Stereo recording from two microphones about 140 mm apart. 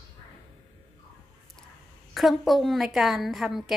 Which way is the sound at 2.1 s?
Centre (ahead or behind).